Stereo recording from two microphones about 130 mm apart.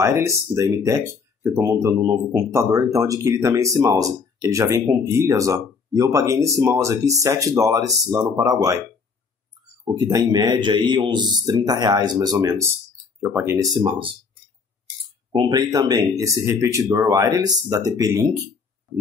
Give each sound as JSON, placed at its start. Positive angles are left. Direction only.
{"t": 0.0, "sound": "speech", "side_deg": -20}
{"t": 10.1, "sound": "a man's voice", "side_deg": -30}
{"t": 13.7, "sound": "a man's voice", "side_deg": -40}
{"t": 15.3, "sound": "speech", "side_deg": -30}